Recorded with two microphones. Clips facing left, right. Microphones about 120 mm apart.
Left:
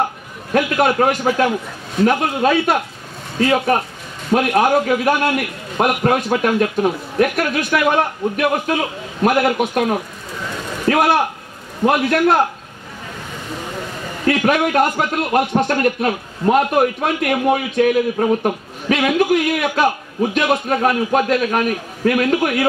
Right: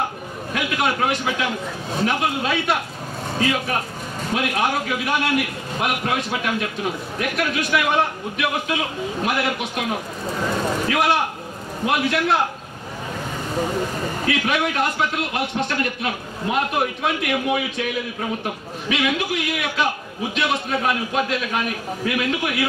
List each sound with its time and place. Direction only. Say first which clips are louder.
0.5 s a man's voice: left 7 dB; 45° left (ahead or behind)
10.9 s a man's voice: left 8 dB; 45° left (ahead or behind)
14.2 s a man's voice: left 7 dB; 45° left (ahead or behind)